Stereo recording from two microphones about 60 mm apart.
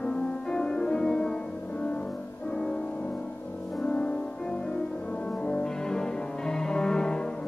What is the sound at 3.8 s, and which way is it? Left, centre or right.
Music, centre.